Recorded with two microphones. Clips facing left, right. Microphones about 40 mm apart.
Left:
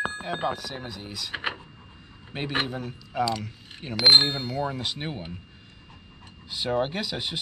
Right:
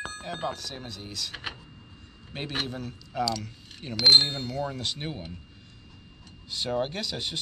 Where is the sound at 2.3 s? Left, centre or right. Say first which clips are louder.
Left 4 dB; centre.